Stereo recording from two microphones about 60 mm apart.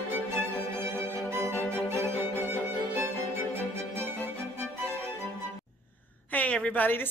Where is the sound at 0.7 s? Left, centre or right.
Right.